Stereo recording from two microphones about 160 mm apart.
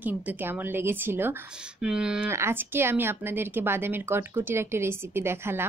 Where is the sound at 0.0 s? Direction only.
10° right (ahead or behind).